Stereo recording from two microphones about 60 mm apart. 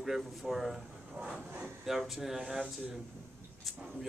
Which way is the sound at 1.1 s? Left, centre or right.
Centre.